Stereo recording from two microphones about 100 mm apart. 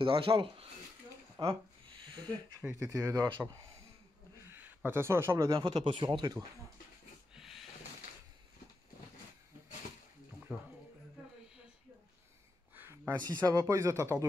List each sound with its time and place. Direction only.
0.0 s speech: 65° right (ahead or behind)
1.4 s speech: 50° right (ahead or behind)
2.7 s speech: 30° right (ahead or behind)
4.5 s speech: 20° right (ahead or behind)
5.6 s speech: 75° right (ahead or behind); by 6.3 s 50° right (ahead or behind)
7.3 s a sound: 5° right (ahead or behind)
10.5 s speech: 15° right (ahead or behind)
12.7 s a sound: 20° right (ahead or behind)
13.2 s speech: 45° right (ahead or behind)